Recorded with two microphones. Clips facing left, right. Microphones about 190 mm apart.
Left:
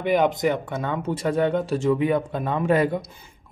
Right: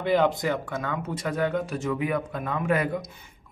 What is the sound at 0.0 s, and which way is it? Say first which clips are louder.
Speech: left 2 dB; 15° left (ahead or behind).